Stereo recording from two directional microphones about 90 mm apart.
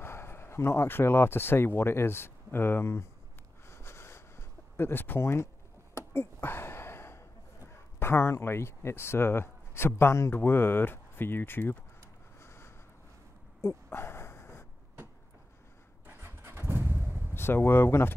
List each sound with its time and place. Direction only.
0.0 s speech: 30° left (ahead or behind)
3.6 s a sound: 30° left (ahead or behind)
5.9 s speech: 25° left (ahead or behind)
12.4 s a sound: 30° left (ahead or behind)
13.8 s bow-wow: 25° left (ahead or behind)
16.2 s vehicle: 25° right (ahead or behind)
17.3 s speech: 25° left (ahead or behind)